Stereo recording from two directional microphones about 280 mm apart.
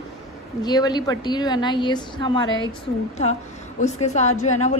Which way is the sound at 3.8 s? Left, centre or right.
Left.